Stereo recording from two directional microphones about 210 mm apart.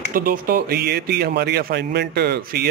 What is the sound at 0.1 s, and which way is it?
Speech, 40° right (ahead or behind).